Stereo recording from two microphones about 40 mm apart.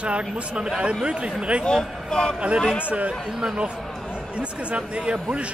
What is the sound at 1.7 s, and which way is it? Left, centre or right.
Speech, centre.